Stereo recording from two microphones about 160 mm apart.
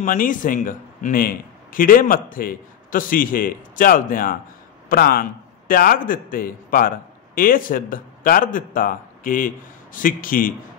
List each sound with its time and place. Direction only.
0.0 s a man's voice: 55° left (ahead or behind)